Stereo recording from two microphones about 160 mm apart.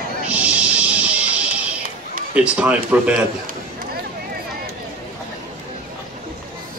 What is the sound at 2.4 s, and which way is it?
Speech, 10° right (ahead or behind).